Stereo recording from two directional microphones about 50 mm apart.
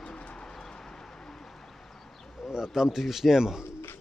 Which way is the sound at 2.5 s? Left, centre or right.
Centre.